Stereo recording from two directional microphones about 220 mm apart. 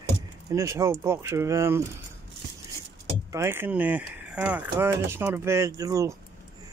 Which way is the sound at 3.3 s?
10° right (ahead or behind).